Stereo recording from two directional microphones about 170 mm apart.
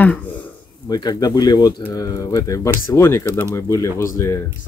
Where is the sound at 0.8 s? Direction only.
25° left (ahead or behind).